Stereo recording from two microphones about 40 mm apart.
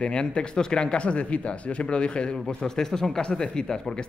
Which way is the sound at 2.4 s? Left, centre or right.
Centre.